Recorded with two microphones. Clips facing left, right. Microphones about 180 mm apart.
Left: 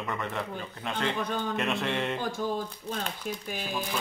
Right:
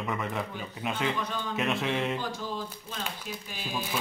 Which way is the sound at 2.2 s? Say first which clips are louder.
Left 4 dB; 50° left (ahead or behind).